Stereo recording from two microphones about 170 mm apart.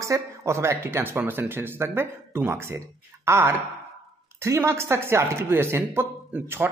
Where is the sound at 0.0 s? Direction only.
20° right (ahead or behind).